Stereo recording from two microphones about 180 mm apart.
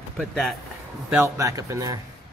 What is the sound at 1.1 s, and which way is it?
Speech, 15° right (ahead or behind).